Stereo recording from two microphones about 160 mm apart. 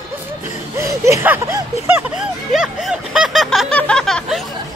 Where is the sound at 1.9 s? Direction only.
5° right (ahead or behind).